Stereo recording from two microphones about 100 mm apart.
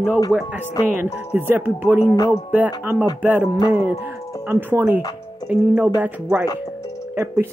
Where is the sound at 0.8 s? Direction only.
20° right (ahead or behind).